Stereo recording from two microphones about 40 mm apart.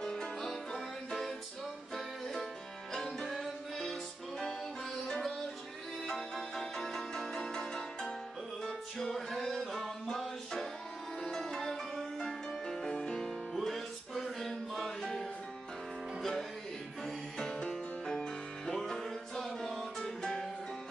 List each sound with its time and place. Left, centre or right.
0.0 s music: centre
0.5 s music: centre
5.0 s music: centre
13.6 s music: centre
20.2 s music: centre